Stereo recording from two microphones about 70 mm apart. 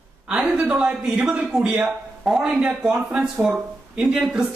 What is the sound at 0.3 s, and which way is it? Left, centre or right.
A man's voice, centre.